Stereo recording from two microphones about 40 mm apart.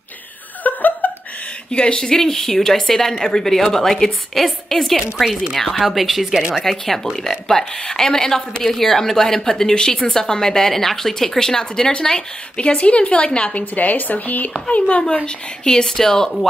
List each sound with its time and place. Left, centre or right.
0.7 s chuckle: left
1.7 s a woman's voice: left
13.7 s a woman's voice: left
14.7 s a woman's voice: left; by 16.3 s centre